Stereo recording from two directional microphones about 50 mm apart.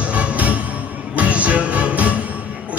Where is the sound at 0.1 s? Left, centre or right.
Right.